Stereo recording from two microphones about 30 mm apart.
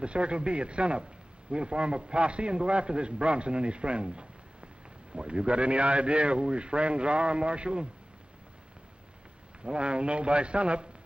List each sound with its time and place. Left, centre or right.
0.0 s a man's voice: right
9.7 s a man's voice: right